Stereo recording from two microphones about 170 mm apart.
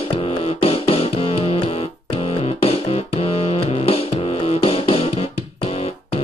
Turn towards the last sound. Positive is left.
turn(degrees=35)  # may be behind; listen again after turning